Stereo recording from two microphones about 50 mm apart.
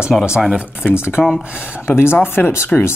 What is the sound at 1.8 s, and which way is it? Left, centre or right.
Speech, left.